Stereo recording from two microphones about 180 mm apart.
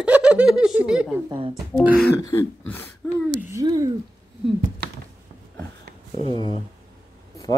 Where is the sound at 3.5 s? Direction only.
20° right (ahead or behind).